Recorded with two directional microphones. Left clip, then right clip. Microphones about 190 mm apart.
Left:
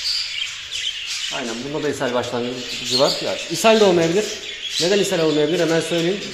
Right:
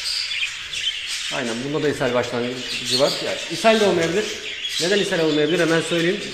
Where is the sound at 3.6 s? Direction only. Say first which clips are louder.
Left 2 dB; 20° left (ahead or behind).